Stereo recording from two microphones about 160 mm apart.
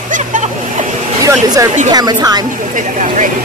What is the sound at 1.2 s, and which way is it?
Speech, 20° right (ahead or behind).